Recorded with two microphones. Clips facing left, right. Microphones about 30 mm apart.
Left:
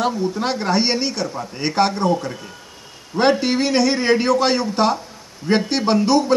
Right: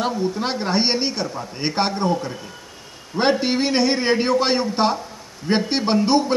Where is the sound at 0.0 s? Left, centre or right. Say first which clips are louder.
Left 2 dB; centre.